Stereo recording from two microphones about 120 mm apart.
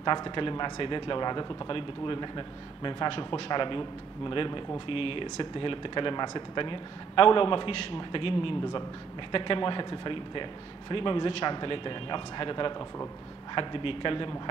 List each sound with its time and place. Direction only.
0.0 s a man's voice: 40° left (ahead or behind)